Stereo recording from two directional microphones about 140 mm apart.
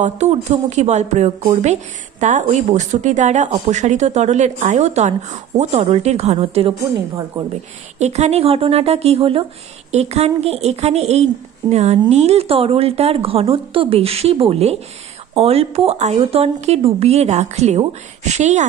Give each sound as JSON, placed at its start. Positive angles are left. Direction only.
{"t": 0.0, "sound": "speech", "side_deg": -55}
{"t": 8.0, "sound": "speech", "side_deg": -50}